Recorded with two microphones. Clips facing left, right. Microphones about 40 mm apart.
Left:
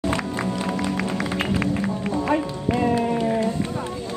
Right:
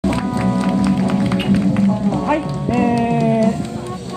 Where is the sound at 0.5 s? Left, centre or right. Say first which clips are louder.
Right 8 dB; right.